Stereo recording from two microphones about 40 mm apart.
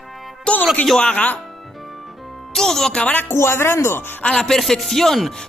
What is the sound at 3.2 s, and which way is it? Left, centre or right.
Speech, left.